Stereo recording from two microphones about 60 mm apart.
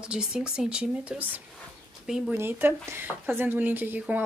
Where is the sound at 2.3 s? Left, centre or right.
Right.